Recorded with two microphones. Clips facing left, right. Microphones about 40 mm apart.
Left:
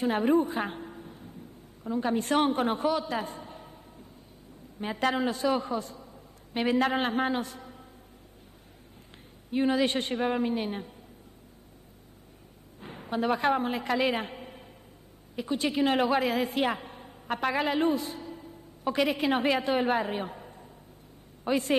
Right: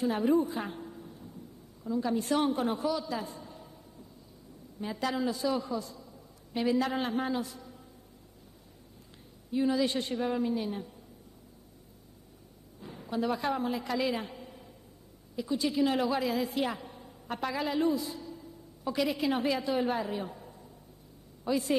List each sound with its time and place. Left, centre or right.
0.0 s a woman's voice: left
9.5 s a woman's voice: left
12.8 s a man's voice: left